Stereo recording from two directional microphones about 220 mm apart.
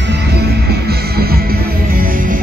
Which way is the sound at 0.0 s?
50° right (ahead or behind).